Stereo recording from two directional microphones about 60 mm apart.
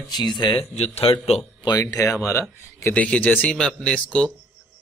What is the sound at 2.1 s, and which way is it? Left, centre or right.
Speech, left.